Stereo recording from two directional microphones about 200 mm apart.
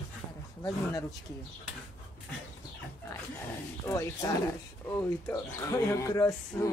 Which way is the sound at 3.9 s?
15° left (ahead or behind).